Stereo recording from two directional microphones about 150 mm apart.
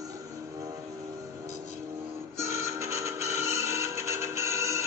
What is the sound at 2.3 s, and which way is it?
Music, 20° right (ahead or behind).